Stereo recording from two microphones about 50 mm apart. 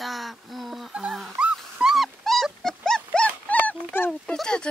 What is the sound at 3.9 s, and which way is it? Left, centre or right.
Dog, left.